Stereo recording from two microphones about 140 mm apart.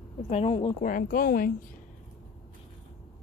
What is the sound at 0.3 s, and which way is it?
Speech, 45° left (ahead or behind).